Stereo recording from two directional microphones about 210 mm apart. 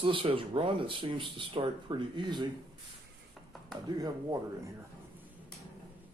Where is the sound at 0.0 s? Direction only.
25° right (ahead or behind).